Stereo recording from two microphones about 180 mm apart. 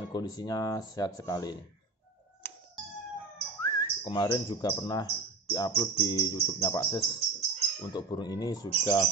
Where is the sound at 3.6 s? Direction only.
25° left (ahead or behind).